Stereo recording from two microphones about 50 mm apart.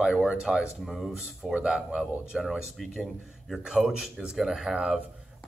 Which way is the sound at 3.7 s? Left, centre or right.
Centre.